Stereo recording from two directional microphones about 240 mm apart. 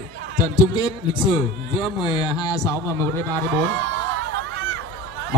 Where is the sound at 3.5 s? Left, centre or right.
Right.